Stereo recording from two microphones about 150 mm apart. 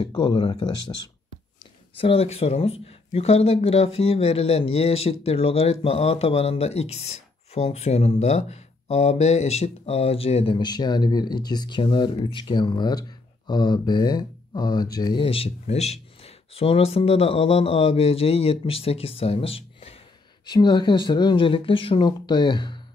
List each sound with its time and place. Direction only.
0.0 s speech: 30° left (ahead or behind)
2.0 s speech: 40° left (ahead or behind)
15.2 s speech: 40° left (ahead or behind)
20.4 s speech: 30° left (ahead or behind)